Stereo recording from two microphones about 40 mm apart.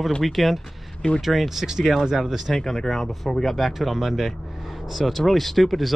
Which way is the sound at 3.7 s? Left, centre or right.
Centre.